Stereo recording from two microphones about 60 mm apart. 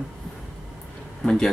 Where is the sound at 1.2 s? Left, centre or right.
Centre.